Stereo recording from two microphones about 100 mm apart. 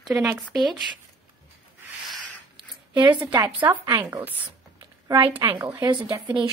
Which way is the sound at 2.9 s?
15° right (ahead or behind).